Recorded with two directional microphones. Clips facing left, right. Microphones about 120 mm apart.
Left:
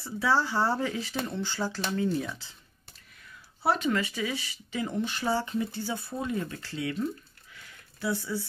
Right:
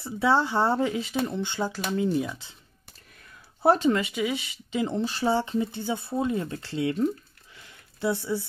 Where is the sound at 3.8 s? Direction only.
20° right (ahead or behind).